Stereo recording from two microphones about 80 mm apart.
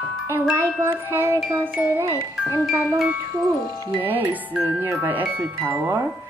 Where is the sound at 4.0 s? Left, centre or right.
Right.